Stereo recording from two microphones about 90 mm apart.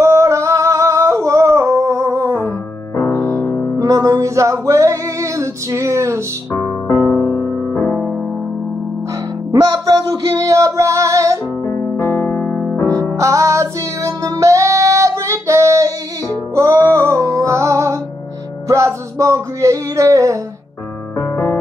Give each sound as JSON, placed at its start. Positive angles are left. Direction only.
{"t": 0.0, "sound": "singing", "side_deg": -35}
{"t": 3.0, "sound": "music", "side_deg": 20}
{"t": 3.7, "sound": "music", "side_deg": -40}
{"t": 6.5, "sound": "music", "side_deg": 30}
{"t": 7.5, "sound": "music", "side_deg": 20}
{"t": 9.5, "sound": "music", "side_deg": -45}
{"t": 11.6, "sound": "music", "side_deg": 30}
{"t": 13.1, "sound": "music", "side_deg": -35}
{"t": 21.2, "sound": "music", "side_deg": 30}